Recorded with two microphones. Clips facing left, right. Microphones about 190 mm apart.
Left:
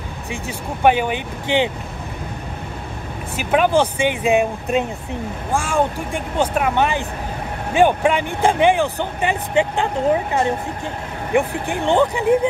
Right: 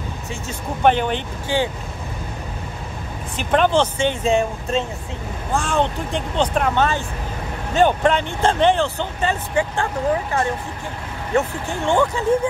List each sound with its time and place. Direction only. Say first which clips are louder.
0.3 s speech: left 2 dB; 10° left (ahead or behind)
3.3 s speech: left 1 dB; 10° left (ahead or behind)
11.3 s speech: left 2 dB; 15° left (ahead or behind)